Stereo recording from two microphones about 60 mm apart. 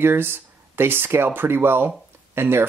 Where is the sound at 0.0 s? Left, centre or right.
Right.